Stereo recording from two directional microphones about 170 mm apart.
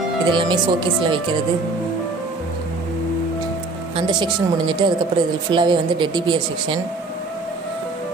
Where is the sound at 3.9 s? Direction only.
25° right (ahead or behind).